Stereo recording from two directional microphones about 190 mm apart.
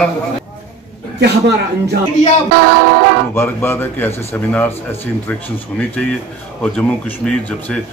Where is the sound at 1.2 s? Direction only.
60° right (ahead or behind).